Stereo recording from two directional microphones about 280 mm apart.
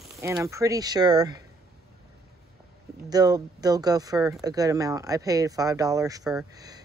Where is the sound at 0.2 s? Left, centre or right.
Centre.